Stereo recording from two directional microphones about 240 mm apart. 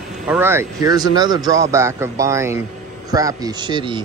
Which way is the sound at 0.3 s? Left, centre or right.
Centre.